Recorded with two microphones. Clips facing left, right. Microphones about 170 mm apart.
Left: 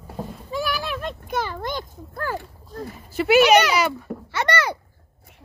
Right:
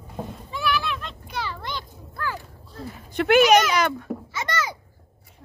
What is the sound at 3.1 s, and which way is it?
A child's voice, 5° left (ahead or behind).